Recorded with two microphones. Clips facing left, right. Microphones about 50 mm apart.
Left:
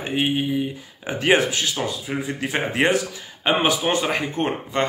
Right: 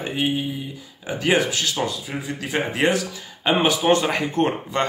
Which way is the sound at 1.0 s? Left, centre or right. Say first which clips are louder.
Left 2 dB; left.